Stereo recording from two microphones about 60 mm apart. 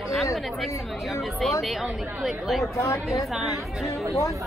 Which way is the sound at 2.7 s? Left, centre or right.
Left.